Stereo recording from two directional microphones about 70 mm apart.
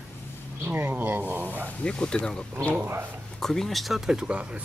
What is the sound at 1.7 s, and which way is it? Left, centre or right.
Speech, centre.